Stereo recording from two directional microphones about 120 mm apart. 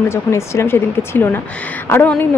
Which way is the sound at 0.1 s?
25° left (ahead or behind).